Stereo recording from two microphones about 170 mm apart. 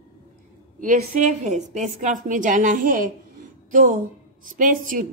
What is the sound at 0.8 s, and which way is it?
A man's voice, 45° right (ahead or behind).